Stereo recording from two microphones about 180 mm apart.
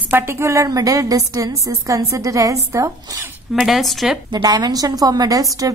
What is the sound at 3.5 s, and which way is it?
Speech, centre (ahead or behind).